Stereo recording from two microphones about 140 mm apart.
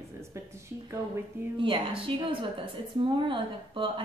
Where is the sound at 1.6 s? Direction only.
40° right (ahead or behind).